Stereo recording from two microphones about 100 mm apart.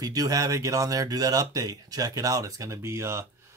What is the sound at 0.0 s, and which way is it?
Speech, 40° right (ahead or behind).